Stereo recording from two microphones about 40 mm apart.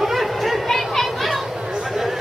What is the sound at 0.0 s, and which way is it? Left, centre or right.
Chatter, centre.